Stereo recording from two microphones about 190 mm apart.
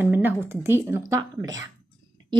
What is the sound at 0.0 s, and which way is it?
A woman's voice, 10° right (ahead or behind).